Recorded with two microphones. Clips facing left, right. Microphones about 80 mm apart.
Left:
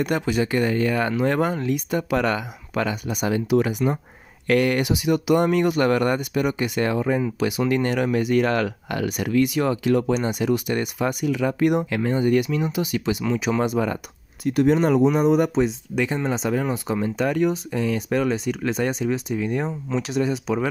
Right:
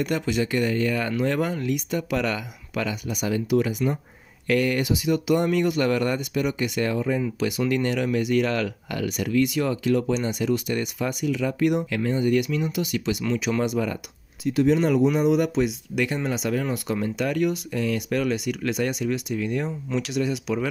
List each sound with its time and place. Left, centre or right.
0.0 s speech: left
14.4 s speech: left